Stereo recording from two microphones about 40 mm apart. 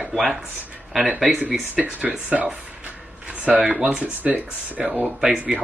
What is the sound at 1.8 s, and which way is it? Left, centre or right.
Speech, right.